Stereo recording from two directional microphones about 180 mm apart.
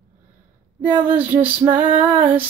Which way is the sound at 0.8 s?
5° right (ahead or behind).